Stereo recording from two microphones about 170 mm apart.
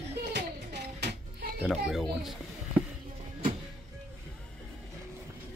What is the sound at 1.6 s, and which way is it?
Speech, 5° right (ahead or behind).